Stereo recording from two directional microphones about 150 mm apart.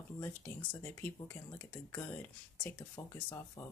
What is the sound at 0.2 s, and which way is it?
Speech, 10° left (ahead or behind).